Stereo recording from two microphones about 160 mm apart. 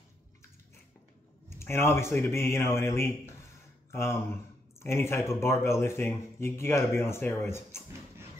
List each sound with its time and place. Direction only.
1.6 s speech: 15° left (ahead or behind)